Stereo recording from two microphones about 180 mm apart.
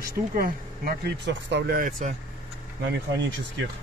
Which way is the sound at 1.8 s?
50° right (ahead or behind).